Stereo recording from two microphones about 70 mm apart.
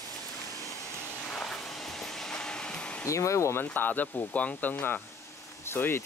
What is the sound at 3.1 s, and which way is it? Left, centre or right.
Speech, left.